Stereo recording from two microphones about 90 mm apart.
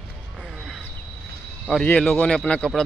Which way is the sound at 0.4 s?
Centre (ahead or behind).